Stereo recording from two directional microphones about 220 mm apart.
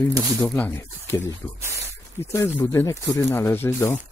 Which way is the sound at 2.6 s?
15° left (ahead or behind).